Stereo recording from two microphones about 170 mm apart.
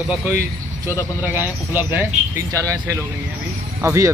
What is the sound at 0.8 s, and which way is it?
Speech, 10° right (ahead or behind).